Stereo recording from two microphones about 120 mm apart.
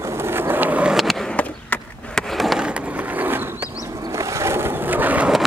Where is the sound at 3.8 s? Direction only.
25° right (ahead or behind).